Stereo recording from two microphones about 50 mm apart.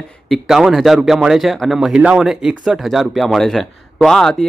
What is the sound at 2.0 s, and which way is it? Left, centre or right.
Speech, centre.